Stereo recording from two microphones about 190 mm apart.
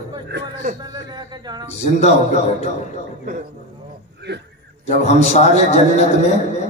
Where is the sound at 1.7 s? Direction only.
35° left (ahead or behind).